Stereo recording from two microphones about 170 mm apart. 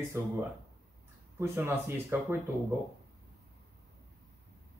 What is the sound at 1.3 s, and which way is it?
Speech, 15° right (ahead or behind).